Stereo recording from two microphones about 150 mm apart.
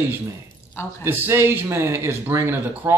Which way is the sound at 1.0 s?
15° right (ahead or behind).